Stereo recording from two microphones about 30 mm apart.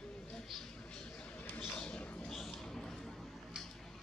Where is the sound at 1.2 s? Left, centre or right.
Left.